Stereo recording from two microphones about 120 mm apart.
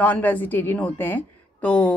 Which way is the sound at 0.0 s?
15° left (ahead or behind).